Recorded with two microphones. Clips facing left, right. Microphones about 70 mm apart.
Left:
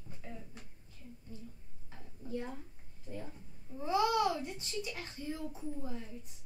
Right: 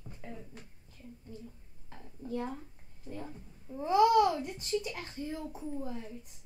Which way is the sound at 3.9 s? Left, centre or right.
Right.